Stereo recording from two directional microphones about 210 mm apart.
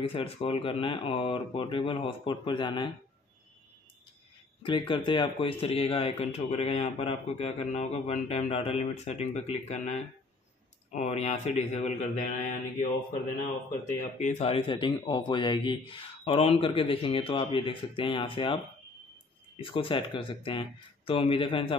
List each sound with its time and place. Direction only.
0.0 s speech: 25° left (ahead or behind)
4.6 s speech: 25° left (ahead or behind)
14.2 s speech: 30° left (ahead or behind)
19.6 s speech: 25° left (ahead or behind)